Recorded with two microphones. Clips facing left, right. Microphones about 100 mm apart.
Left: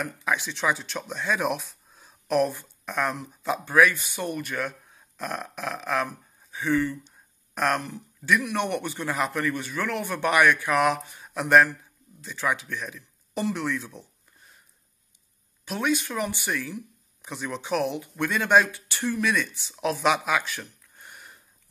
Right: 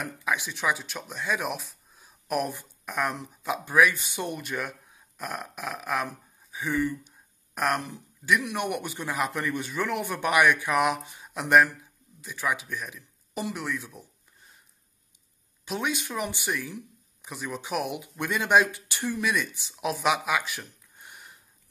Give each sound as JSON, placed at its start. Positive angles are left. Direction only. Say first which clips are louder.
{"t": 0.0, "sound": "speech", "louder": "left 2 dB", "side_deg": -10}
{"t": 6.5, "sound": "a sound", "louder": "left 3 dB", "side_deg": -10}
{"t": 7.9, "sound": "speech", "louder": "left 1 dB", "side_deg": -15}
{"t": 15.6, "sound": "speech", "louder": "left 4 dB", "side_deg": -15}
{"t": 17.2, "sound": "speech", "louder": "left 2 dB", "side_deg": -5}